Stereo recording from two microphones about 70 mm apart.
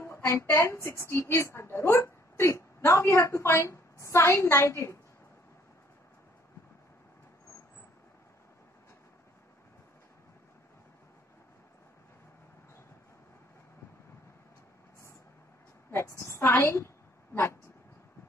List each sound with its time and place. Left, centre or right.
0.0 s a sound: left
0.4 s a woman's voice: left
15.9 s a woman's voice: left